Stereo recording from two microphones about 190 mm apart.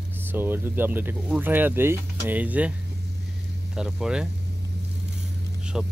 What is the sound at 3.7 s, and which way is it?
Speech, 5° right (ahead or behind).